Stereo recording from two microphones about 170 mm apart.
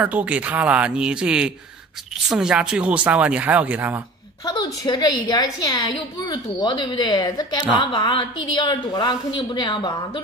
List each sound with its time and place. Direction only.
0.0 s speech: 10° right (ahead or behind)
4.5 s a woman's voice: 25° left (ahead or behind)